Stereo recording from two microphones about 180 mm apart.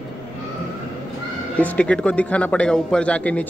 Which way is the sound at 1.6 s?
5° left (ahead or behind).